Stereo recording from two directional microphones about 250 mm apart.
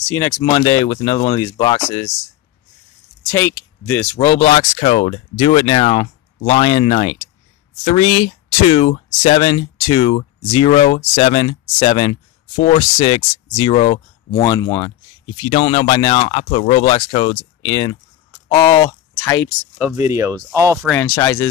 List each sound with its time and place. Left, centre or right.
0.4 s speech: centre
3.3 s speech: centre
19.8 s speech: centre
20.8 s speech: centre